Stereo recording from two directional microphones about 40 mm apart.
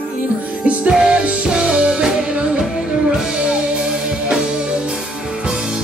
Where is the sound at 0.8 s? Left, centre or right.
Right.